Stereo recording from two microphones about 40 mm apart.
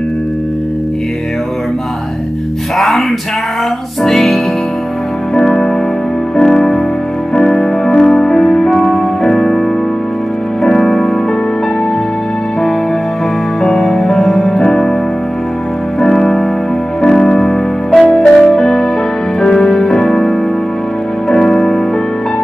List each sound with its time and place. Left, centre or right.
4.0 s music: centre
10.7 s music: centre
13.6 s music: centre
16.0 s music: centre
17.0 s keyboard: centre
18.1 s music: centre